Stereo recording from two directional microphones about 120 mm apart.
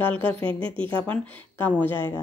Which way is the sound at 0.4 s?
45° right (ahead or behind).